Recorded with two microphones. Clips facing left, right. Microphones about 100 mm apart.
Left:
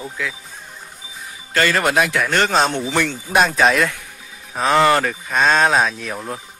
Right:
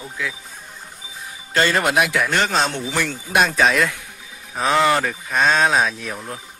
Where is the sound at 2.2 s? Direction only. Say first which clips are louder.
Left 3 dB; centre (ahead or behind).